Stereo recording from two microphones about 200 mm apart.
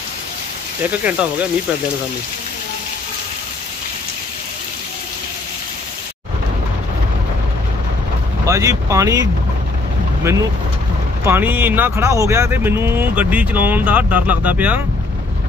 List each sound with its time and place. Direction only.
0.8 s speech: 5° right (ahead or behind)
8.5 s speech: 15° right (ahead or behind)
11.2 s speech: 10° right (ahead or behind)